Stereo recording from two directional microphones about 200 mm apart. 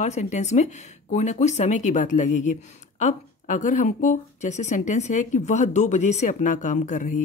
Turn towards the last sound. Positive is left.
turn(degrees=40)  # may be behind; listen again after turning